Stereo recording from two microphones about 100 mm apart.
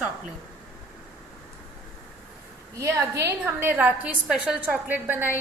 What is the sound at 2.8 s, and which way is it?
A woman's voice, 30° right (ahead or behind).